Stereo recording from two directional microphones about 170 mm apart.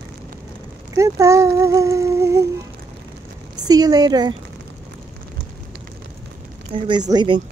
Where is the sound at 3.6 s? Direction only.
25° right (ahead or behind).